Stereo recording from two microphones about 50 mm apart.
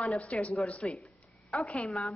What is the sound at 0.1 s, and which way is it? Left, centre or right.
Speech, left.